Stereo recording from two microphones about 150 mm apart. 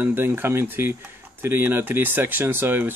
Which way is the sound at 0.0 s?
15° right (ahead or behind).